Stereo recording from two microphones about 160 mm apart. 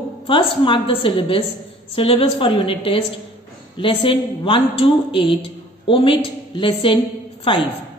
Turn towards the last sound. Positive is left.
turn(degrees=35)  # may be behind; listen again after turning